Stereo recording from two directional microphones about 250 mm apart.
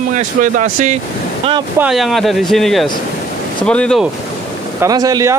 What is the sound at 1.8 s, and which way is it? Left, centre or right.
Speech, centre.